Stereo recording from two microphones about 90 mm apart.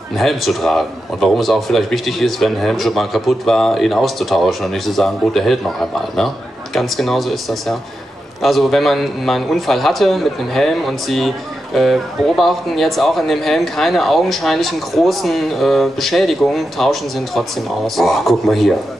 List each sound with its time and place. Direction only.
0.1 s a man's voice: centre (ahead or behind)